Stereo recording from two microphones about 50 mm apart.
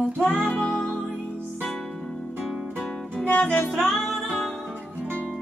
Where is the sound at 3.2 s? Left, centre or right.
Left.